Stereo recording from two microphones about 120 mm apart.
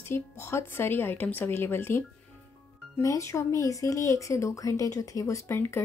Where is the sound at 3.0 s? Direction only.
25° left (ahead or behind).